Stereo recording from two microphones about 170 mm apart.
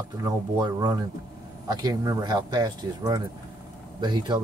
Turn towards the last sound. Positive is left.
turn(degrees=-25)  # may be behind; listen again after turning